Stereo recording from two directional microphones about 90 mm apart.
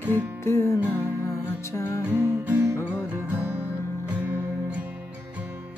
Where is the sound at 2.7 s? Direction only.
30° left (ahead or behind).